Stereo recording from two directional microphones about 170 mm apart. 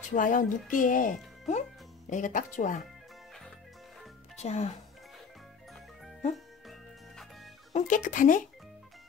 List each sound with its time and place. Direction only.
0.1 s speech: 50° left (ahead or behind)
4.4 s speech: 40° left (ahead or behind)
6.3 s music: centre (ahead or behind)
7.7 s speech: 50° left (ahead or behind)